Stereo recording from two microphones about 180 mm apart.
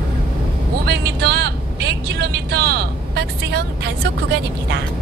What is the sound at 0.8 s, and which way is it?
Vehicle, 65° right (ahead or behind).